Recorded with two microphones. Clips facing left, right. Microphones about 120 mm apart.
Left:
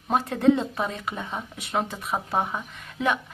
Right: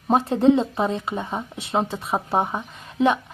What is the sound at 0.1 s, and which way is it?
Speech, 30° right (ahead or behind).